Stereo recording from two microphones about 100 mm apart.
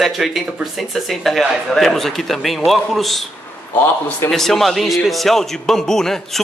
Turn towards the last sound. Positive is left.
turn(degrees=5)  # may be behind; listen again after turning